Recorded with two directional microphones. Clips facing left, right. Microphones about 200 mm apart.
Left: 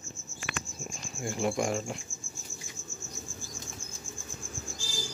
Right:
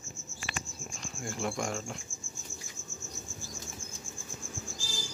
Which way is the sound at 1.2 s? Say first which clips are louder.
Left 5 dB; 5° left (ahead or behind).